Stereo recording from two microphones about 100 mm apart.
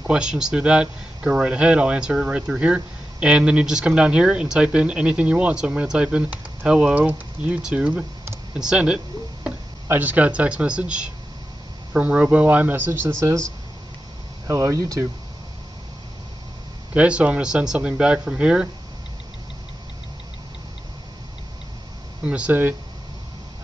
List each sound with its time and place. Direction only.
0.0 s speech: 10° right (ahead or behind)
14.5 s speech: 35° right (ahead or behind)
16.9 s speech: 15° right (ahead or behind)
22.2 s speech: 10° right (ahead or behind)